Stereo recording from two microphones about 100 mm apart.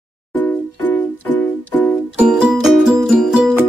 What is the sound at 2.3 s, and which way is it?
Music, 10° right (ahead or behind).